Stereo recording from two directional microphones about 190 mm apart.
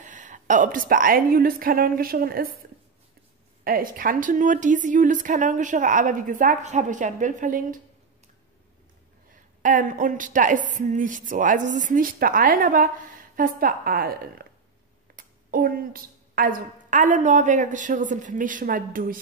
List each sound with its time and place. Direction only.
0.0 s a woman's voice: 40° right (ahead or behind)
3.6 s a woman's voice: 50° right (ahead or behind)
9.6 s a woman's voice: 45° right (ahead or behind)